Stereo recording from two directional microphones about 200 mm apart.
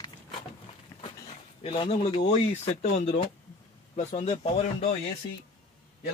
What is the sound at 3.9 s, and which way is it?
Speech, 30° left (ahead or behind).